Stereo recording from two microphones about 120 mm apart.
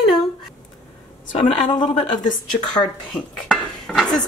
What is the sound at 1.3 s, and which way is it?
Speech, 75° left (ahead or behind).